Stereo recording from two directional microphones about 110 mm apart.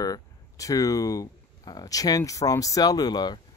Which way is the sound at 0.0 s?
35° left (ahead or behind).